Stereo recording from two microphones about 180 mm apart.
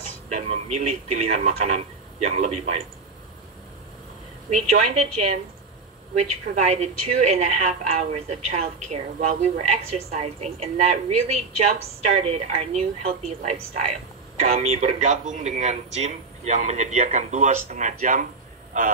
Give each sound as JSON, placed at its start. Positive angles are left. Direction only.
{"t": 0.3, "sound": "a woman's voice", "side_deg": -40}
{"t": 4.5, "sound": "a woman's voice", "side_deg": -35}